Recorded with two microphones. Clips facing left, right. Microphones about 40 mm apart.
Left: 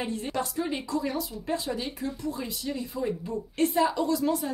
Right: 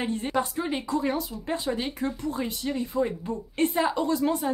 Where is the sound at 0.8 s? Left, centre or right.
Right.